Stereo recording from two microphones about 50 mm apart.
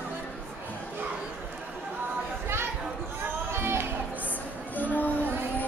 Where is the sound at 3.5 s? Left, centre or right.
Right.